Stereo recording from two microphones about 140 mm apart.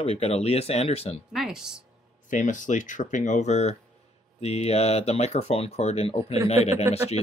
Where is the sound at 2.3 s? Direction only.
65° left (ahead or behind); by 6.7 s 45° left (ahead or behind).